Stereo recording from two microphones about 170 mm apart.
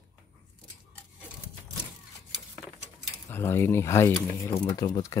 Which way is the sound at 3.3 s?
15° left (ahead or behind).